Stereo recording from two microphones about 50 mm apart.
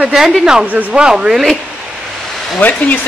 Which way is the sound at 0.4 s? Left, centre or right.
Centre.